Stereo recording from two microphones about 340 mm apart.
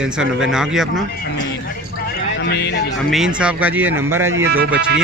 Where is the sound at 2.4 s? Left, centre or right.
Left.